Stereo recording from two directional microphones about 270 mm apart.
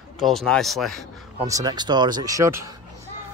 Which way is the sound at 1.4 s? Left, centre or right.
Centre.